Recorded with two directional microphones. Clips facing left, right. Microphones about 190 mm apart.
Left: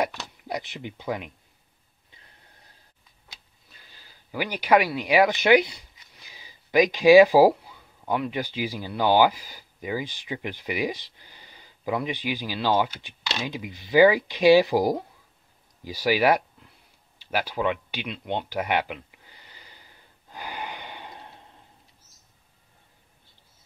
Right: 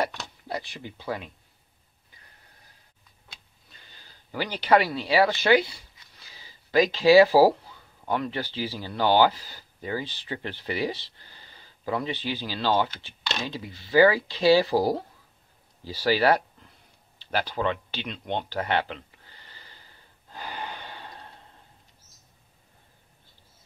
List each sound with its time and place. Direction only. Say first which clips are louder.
0.5 s speech: left 2 dB; 20° left (ahead or behind)
3.7 s speech: even; 5° left (ahead or behind)
17.2 s a sound: left 1 dB; 10° left (ahead or behind)